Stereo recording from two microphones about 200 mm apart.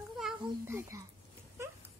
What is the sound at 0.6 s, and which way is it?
Whispering, 15° right (ahead or behind).